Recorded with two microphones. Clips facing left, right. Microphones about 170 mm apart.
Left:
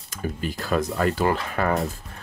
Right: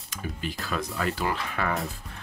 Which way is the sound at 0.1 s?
45° left (ahead or behind).